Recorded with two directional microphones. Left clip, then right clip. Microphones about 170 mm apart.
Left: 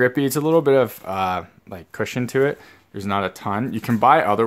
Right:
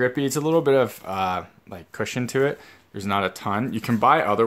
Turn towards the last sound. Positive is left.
turn(degrees=20)  # may be behind; listen again after turning